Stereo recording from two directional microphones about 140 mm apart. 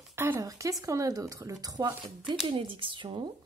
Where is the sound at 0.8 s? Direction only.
25° right (ahead or behind).